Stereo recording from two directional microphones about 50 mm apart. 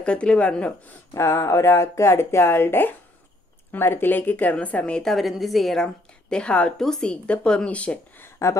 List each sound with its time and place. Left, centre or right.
0.0 s speech: left
1.1 s speech: left
5.0 s a woman's voice: centre
6.3 s speech: left
6.8 s speech: centre
8.4 s speech: left